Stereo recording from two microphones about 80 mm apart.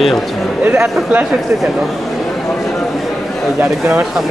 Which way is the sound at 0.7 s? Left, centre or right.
Centre.